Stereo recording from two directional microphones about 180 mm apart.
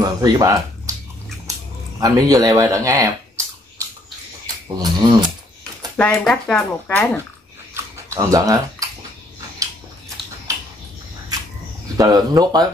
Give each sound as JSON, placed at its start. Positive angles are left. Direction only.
{"t": 0.0, "sound": "speech", "side_deg": -20}
{"t": 2.0, "sound": "speech", "side_deg": -20}
{"t": 4.7, "sound": "speech", "side_deg": -25}
{"t": 5.9, "sound": "speech", "side_deg": 5}
{"t": 7.7, "sound": "a sound", "side_deg": -15}
{"t": 12.0, "sound": "speech", "side_deg": -20}